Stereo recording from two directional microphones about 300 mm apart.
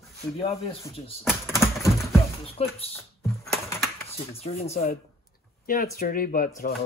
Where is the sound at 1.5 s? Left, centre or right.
Centre.